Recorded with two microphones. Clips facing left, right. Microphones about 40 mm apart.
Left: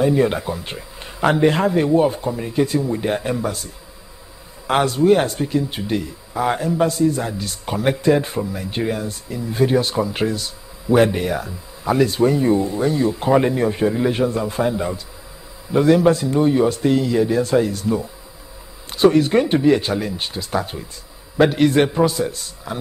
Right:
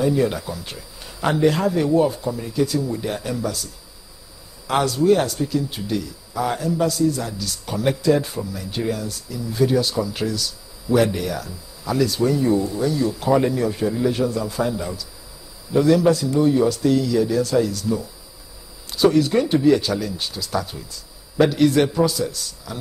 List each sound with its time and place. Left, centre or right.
0.0 s a man's voice: left